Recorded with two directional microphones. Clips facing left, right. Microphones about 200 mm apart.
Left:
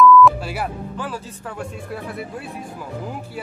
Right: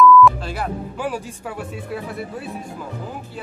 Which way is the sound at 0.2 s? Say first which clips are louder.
Even; 10° left (ahead or behind).